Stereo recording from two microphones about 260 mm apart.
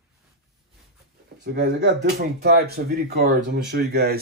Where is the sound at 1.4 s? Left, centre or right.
Right.